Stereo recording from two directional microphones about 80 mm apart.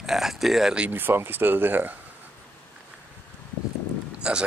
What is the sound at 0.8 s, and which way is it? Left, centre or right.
Speech, right.